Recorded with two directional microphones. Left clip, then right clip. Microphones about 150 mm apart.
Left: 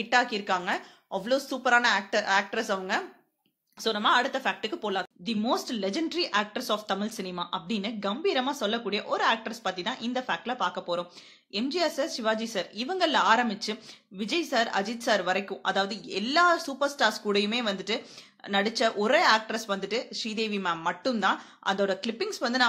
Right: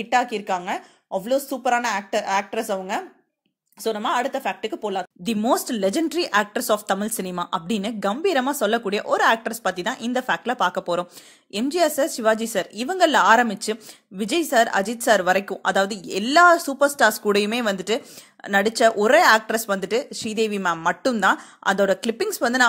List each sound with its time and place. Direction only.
0.0 s a woman's voice: 30° right (ahead or behind)
5.2 s a woman's voice: 55° right (ahead or behind)